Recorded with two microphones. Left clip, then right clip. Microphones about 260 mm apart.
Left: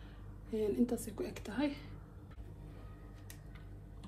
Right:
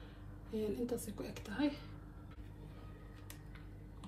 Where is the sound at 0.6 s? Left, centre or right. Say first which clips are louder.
Left 4 dB; left.